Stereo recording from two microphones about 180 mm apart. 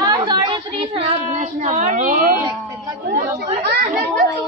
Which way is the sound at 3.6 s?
65° right (ahead or behind).